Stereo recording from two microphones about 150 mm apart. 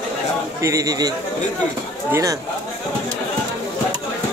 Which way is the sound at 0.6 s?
20° right (ahead or behind).